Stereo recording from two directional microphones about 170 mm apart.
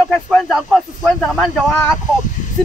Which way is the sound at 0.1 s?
Centre (ahead or behind).